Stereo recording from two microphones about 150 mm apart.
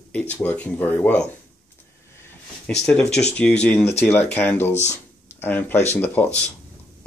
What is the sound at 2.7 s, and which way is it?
Speech, 5° left (ahead or behind).